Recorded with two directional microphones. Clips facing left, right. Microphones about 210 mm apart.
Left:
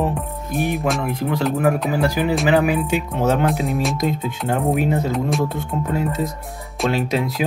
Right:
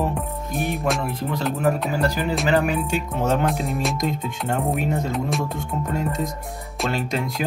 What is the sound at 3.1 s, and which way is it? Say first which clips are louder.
Speech: left 2 dB; centre (ahead or behind).